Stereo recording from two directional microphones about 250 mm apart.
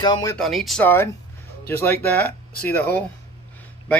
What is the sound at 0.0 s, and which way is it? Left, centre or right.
Speech, centre.